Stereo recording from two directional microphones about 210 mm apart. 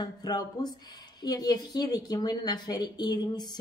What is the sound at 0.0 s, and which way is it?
A woman's voice, 20° left (ahead or behind).